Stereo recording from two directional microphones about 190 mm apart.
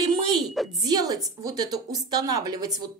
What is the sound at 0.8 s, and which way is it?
Speech, 20° right (ahead or behind).